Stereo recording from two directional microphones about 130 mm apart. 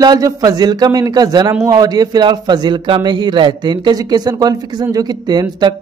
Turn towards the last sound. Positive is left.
turn(degrees=-35)  # may be behind; listen again after turning